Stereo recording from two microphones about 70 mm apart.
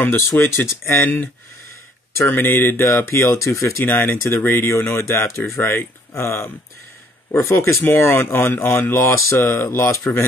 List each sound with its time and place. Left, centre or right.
0.4 s speech: left
3.8 s speech: left
9.8 s speech: left